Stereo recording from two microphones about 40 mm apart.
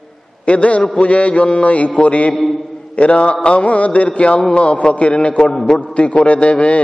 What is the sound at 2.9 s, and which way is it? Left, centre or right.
A man's voice, left.